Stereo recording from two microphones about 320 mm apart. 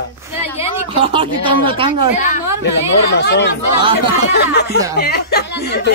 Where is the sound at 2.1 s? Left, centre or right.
Left.